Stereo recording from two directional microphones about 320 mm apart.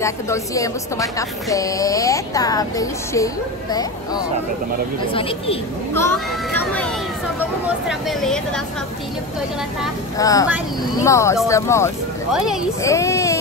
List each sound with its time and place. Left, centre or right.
0.0 s speech: centre
5.0 s speech: centre
7.6 s speech: centre
10.1 s speech: centre